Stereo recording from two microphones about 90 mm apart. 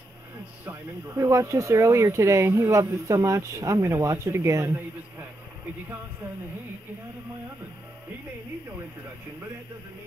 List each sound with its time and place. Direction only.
1.1 s speech: 30° right (ahead or behind)